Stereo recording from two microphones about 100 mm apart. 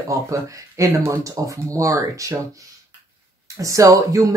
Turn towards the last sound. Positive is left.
turn(degrees=-35)  # may be behind; listen again after turning